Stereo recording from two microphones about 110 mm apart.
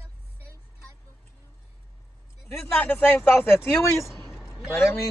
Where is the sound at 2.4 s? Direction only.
15° left (ahead or behind).